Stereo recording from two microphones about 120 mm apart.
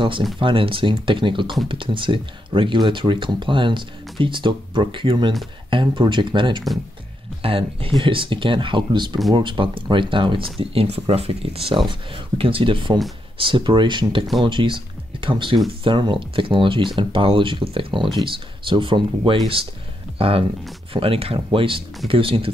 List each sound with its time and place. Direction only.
0.4 s speech: 45° right (ahead or behind)